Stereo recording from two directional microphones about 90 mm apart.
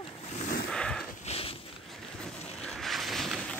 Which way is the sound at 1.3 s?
90° left.